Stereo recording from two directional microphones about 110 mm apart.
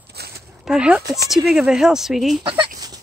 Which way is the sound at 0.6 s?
5° right (ahead or behind).